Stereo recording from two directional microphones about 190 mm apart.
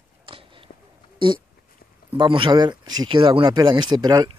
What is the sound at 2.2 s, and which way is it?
Speech, 25° right (ahead or behind).